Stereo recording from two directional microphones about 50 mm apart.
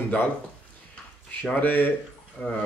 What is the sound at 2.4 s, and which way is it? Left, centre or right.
Speech, left.